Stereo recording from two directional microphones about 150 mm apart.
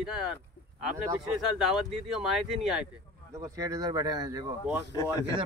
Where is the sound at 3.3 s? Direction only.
20° right (ahead or behind).